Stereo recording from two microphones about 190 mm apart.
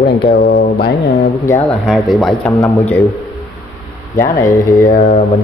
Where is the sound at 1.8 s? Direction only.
Centre (ahead or behind).